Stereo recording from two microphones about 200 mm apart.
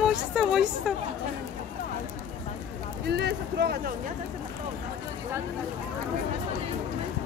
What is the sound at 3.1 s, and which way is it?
Speech, 55° right (ahead or behind).